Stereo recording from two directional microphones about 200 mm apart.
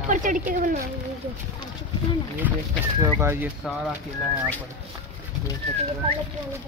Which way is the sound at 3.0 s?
15° right (ahead or behind).